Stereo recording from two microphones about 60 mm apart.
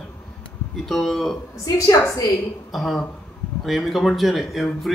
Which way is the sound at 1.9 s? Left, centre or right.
Left.